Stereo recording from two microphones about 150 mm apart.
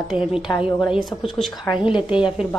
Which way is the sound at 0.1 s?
5° right (ahead or behind).